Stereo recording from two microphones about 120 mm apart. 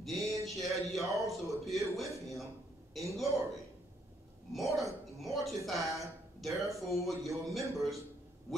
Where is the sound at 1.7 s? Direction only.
Centre (ahead or behind).